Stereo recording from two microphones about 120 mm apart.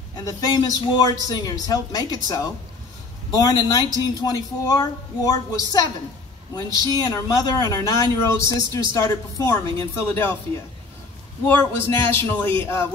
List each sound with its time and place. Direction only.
0.2 s a man's voice: 30° left (ahead or behind)
11.4 s speech: 15° left (ahead or behind)